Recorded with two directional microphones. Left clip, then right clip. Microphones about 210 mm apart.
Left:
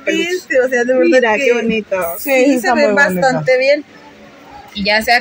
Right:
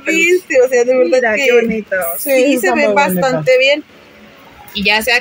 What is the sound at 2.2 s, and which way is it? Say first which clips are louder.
Speech: right 1 dB; centre (ahead or behind).